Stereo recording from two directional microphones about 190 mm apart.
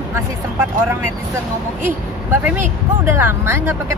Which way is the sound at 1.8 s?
10° right (ahead or behind).